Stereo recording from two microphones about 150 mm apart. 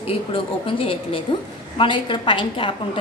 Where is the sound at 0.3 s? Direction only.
35° left (ahead or behind).